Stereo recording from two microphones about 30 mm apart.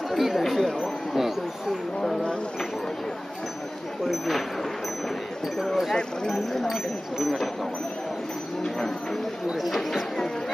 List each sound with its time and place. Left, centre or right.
0.1 s a sound: centre
0.4 s speech: centre
0.7 s a sound: centre
6.2 s speech: centre
6.7 s speech: centre
8.6 s speech: centre